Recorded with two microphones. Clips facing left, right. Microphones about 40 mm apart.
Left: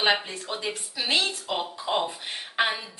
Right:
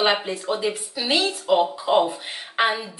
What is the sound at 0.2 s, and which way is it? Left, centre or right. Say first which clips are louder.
Speech: right 8 dB; right.